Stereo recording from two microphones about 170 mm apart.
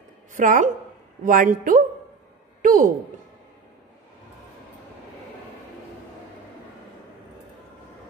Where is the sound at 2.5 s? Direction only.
50° right (ahead or behind).